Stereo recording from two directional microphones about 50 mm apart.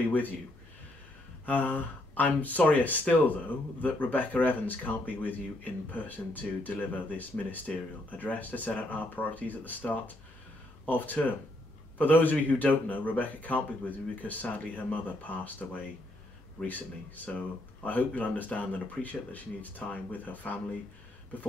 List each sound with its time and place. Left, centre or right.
1.4 s speech: left
17.2 s speech: left